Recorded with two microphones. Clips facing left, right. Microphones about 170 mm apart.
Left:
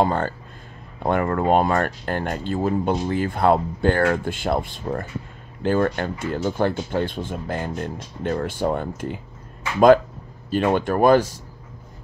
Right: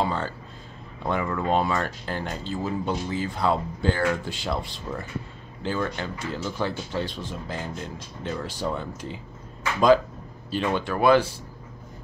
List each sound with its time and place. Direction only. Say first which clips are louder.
0.0 s speech: left 6 dB; 50° left (ahead or behind)
10.5 s speech: left 6 dB; 50° left (ahead or behind)